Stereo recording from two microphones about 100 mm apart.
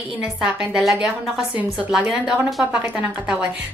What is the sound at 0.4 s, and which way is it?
A woman's voice, 10° right (ahead or behind).